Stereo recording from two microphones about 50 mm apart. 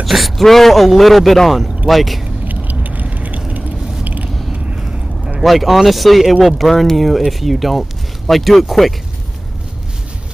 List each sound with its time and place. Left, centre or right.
0.0 s speech: centre
2.4 s vehicle: right
4.0 s creak: right
4.5 s a sound: right
5.4 s speech: centre